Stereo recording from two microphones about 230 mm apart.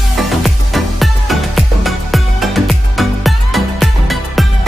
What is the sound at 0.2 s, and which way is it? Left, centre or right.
Music, centre.